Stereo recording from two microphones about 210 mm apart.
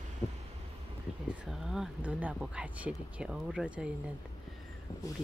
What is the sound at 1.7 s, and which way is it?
Speech, 5° right (ahead or behind).